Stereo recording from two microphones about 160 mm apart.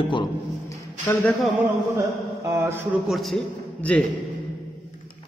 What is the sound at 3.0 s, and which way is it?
Speech, centre (ahead or behind).